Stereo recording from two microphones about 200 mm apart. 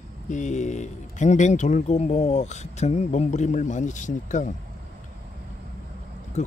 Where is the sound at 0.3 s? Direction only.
35° left (ahead or behind).